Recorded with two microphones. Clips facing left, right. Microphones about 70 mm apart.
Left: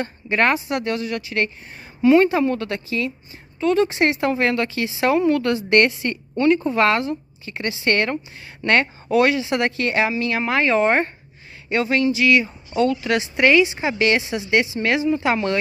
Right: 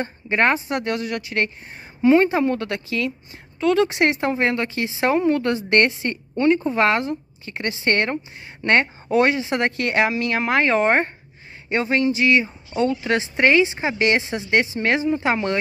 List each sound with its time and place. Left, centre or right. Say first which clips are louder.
0.0 s speech: even; right
0.7 s speech: left 1 dB; right
2.0 s a woman's voice: left 1 dB; right
3.5 s speech: even; right
4.0 s speech: even; right
4.3 s a woman's voice: left 1 dB; right
9.8 s a woman's voice: even; right